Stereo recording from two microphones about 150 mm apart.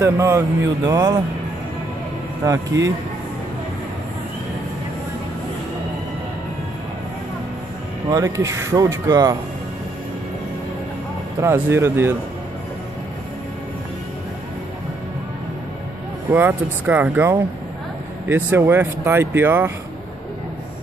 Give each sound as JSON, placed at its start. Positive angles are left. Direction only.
{"t": 0.0, "sound": "speech", "side_deg": -20}
{"t": 2.4, "sound": "speech", "side_deg": -20}
{"t": 8.1, "sound": "speech", "side_deg": -20}
{"t": 11.4, "sound": "speech", "side_deg": -15}
{"t": 16.3, "sound": "speech", "side_deg": -15}